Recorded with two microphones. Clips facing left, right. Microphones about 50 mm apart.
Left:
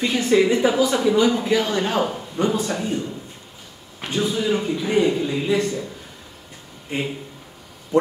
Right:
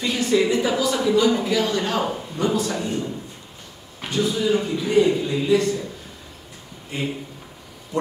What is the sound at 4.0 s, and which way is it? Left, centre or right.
A man's voice, centre.